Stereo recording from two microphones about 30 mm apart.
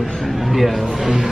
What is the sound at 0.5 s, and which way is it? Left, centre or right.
Speech, centre.